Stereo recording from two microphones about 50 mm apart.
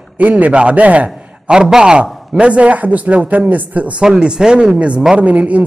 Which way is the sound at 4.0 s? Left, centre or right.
Centre.